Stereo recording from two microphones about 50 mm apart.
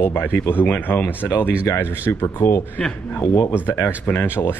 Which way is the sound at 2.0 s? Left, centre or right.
Left.